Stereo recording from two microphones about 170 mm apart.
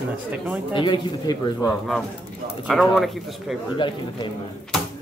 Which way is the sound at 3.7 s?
30° left (ahead or behind).